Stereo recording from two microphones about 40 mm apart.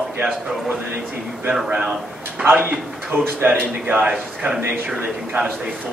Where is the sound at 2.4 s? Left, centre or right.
Right.